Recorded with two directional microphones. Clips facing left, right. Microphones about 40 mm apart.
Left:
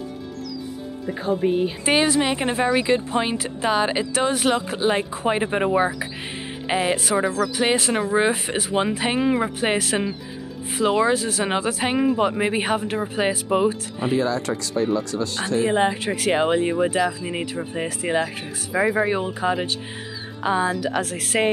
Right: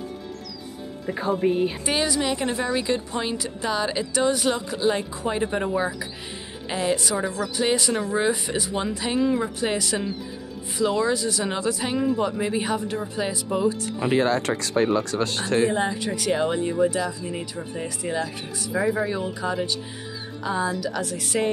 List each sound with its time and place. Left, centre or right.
1.0 s speech: centre
1.9 s speech: left
14.1 s speech: right
15.7 s speech: left